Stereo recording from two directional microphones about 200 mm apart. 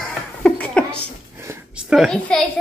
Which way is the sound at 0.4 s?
5° left (ahead or behind).